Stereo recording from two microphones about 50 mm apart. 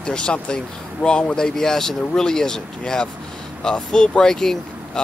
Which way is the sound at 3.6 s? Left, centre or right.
Centre.